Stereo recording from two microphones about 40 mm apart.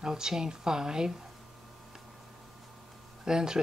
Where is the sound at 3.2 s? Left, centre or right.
Centre.